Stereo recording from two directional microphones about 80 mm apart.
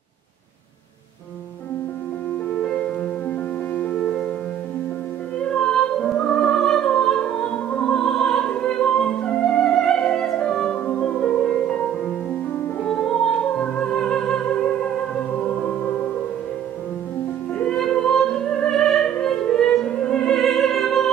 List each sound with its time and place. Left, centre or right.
2.6 s music: centre
5.4 s music: centre
17.6 s opera: centre